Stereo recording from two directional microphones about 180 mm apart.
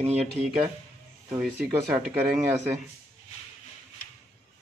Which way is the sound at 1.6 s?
15° right (ahead or behind).